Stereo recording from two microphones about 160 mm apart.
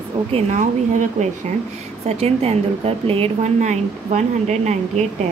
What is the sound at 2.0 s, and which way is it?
A woman's voice, 40° right (ahead or behind).